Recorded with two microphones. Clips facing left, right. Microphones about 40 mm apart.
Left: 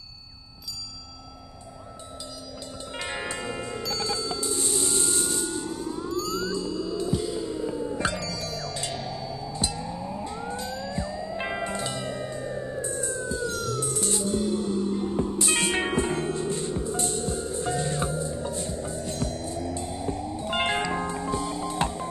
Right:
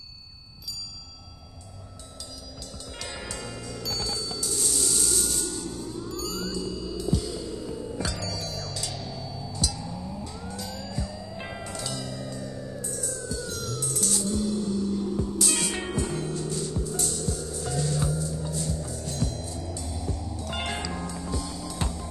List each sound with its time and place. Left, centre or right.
3.0 s music: left
6.1 s music: centre
7.1 s music: left
8.2 s music: centre
8.7 s music: left
9.0 s music: centre
9.5 s music: left
13.5 s music: centre
13.7 s music: left